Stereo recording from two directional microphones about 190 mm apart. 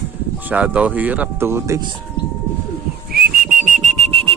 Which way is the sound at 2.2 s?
60° left (ahead or behind).